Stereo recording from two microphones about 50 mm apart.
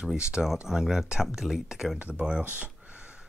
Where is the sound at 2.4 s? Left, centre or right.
Right.